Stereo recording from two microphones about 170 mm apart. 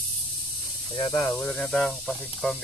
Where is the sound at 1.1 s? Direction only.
10° left (ahead or behind).